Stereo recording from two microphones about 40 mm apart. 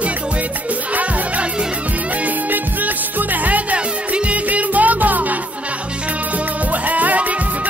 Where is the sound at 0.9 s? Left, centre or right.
Right.